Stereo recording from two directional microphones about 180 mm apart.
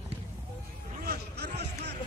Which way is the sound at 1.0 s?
65° right (ahead or behind).